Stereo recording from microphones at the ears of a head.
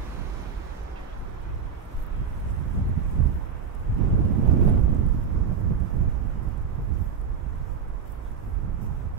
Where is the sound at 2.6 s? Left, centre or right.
Right.